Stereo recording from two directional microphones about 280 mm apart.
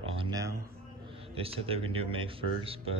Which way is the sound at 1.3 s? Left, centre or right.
Centre.